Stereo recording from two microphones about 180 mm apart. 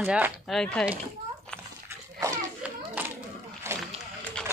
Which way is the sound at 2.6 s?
10° right (ahead or behind).